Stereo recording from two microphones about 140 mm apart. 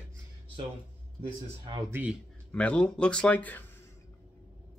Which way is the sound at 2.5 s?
10° left (ahead or behind).